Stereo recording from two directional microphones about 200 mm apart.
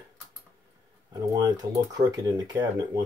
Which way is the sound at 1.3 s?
20° right (ahead or behind).